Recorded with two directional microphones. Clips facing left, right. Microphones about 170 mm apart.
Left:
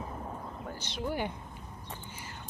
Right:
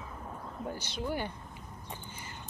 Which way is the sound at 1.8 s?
Centre (ahead or behind).